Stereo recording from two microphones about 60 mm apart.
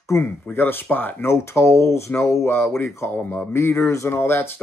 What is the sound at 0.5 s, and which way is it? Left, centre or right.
Speech, left.